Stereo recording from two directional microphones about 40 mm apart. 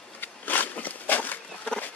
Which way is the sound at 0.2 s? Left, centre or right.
Left.